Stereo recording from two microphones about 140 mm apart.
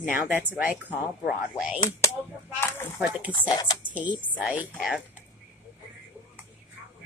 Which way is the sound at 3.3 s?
30° left (ahead or behind).